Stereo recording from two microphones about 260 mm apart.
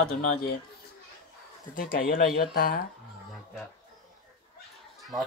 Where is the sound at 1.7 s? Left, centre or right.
Left.